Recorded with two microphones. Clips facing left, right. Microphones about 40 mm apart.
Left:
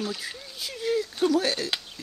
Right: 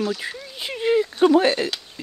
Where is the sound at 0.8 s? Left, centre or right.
Right.